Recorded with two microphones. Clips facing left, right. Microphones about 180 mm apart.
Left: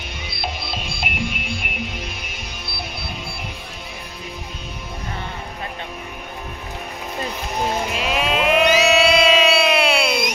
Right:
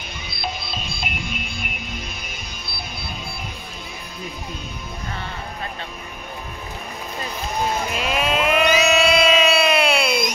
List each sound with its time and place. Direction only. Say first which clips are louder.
1.2 s music: left 4 dB; 50° right (ahead or behind)
7.9 s a sound: left 1 dB; centre (ahead or behind)
8.7 s music: left 2 dB; centre (ahead or behind)